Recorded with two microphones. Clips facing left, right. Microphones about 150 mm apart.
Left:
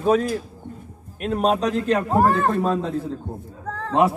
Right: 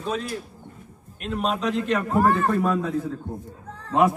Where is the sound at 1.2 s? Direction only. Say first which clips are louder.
Left 5 dB; 40° left (ahead or behind).